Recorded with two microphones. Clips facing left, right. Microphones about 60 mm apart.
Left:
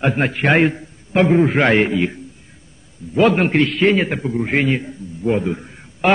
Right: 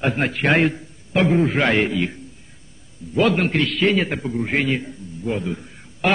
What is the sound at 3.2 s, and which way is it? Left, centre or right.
A man's voice, left.